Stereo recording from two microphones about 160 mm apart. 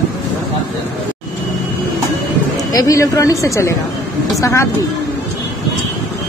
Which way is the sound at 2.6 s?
20° left (ahead or behind).